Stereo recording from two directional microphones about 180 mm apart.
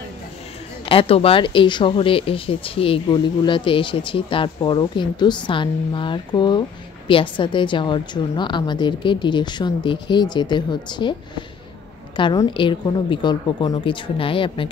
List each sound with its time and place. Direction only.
0.8 s speech: 30° left (ahead or behind)